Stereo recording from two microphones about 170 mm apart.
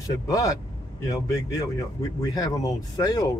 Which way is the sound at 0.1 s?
20° left (ahead or behind).